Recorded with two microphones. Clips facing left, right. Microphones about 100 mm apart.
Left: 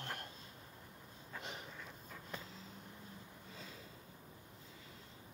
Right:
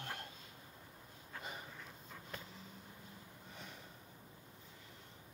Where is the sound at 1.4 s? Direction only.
85° left.